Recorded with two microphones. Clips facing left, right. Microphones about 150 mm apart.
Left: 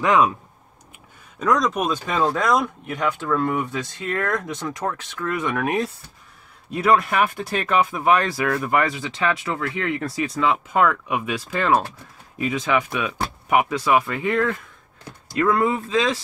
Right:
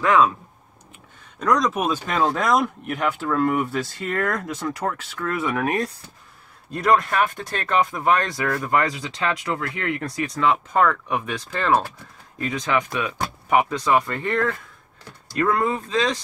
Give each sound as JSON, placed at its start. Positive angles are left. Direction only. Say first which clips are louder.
{"t": 0.0, "sound": "speech", "louder": "even", "side_deg": 15}
{"t": 1.4, "sound": "speech", "louder": "even", "side_deg": 0}